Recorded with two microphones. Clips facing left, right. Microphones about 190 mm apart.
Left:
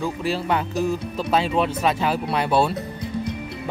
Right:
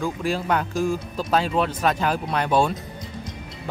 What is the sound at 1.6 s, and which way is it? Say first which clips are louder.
Speech: left 1 dB; 10° left (ahead or behind).